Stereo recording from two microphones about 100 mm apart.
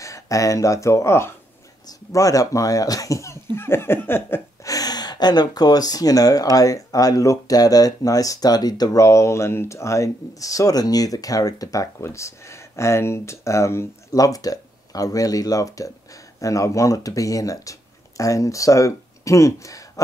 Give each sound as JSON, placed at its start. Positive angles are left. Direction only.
{"t": 0.0, "sound": "speech", "side_deg": 35}
{"t": 3.5, "sound": "a sound", "side_deg": 25}
{"t": 4.6, "sound": "speech", "side_deg": 40}